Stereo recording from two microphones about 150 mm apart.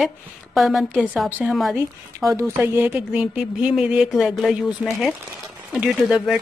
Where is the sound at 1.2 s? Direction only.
15° right (ahead or behind).